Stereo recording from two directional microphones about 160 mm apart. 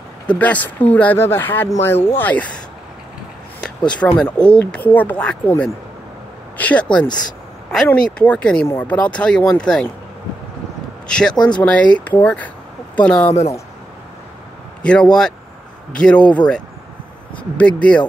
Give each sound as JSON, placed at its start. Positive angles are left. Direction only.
{"t": 0.3, "sound": "speech", "side_deg": 10}
{"t": 4.0, "sound": "speech", "side_deg": 10}
{"t": 6.6, "sound": "speech", "side_deg": 10}
{"t": 11.1, "sound": "speech", "side_deg": 5}
{"t": 11.3, "sound": "speech", "side_deg": 25}
{"t": 11.6, "sound": "speech", "side_deg": 5}
{"t": 14.8, "sound": "speech", "side_deg": 5}
{"t": 17.6, "sound": "speech", "side_deg": 5}